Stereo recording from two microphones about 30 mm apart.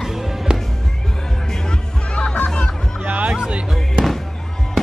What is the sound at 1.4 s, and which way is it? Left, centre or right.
Music, centre.